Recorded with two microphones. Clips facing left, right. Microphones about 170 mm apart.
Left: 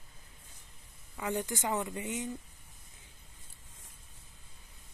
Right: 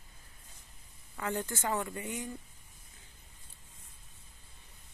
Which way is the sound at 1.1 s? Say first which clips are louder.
Left 1 dB; 15° left (ahead or behind).